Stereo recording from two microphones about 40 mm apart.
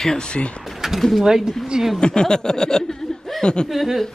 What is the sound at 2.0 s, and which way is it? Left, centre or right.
Speech, left.